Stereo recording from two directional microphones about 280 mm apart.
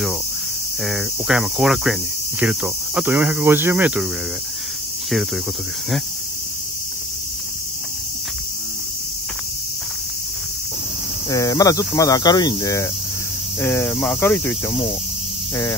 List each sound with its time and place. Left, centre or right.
0.8 s cricket: centre
11.2 s cricket: centre
14.7 s cricket: centre